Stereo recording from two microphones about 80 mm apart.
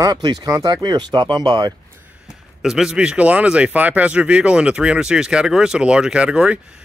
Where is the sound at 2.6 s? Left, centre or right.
Centre.